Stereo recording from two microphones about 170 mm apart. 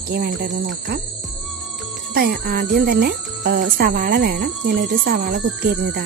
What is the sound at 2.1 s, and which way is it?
Speech, 65° right (ahead or behind).